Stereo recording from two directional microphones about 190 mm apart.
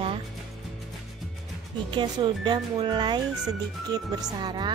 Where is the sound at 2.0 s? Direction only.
25° right (ahead or behind).